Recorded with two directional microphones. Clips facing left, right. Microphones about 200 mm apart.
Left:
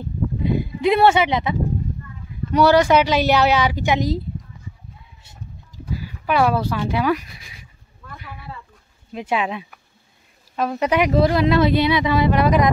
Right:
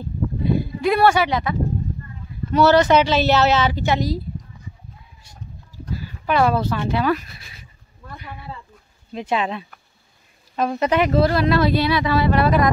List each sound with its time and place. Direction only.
0.4 s a sound: 20° left (ahead or behind)
2.5 s speech: 10° left (ahead or behind)
5.9 s speech: 10° left (ahead or behind)
9.1 s speech: 10° left (ahead or behind)